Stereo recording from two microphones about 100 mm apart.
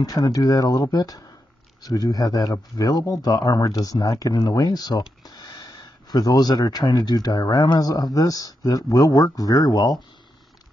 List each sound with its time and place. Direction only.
0.0 s speech: 40° left (ahead or behind)